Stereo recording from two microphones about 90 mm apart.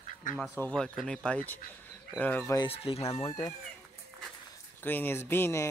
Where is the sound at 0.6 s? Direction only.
15° left (ahead or behind).